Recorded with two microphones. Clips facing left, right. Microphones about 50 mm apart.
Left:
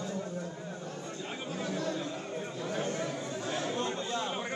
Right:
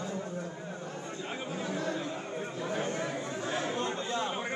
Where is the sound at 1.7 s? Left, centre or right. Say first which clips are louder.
Right 1 dB; right.